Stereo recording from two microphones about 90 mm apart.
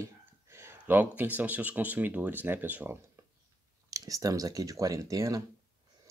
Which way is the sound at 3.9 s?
40° right (ahead or behind).